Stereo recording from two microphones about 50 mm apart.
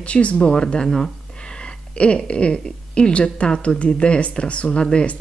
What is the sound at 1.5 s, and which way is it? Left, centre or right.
A woman's voice, left.